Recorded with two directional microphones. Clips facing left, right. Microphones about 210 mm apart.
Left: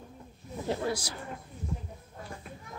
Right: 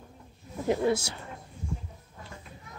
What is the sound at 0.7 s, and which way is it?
Speech, 25° right (ahead or behind).